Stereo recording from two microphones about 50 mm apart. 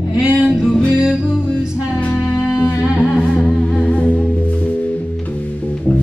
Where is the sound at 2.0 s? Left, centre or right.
Left.